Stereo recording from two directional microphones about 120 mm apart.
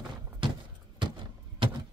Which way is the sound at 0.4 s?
45° right (ahead or behind).